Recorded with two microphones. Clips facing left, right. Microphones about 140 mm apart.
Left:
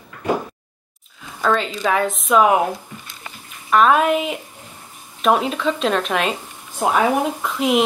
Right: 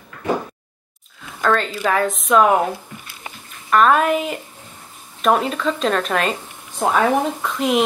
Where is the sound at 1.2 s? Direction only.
Centre (ahead or behind).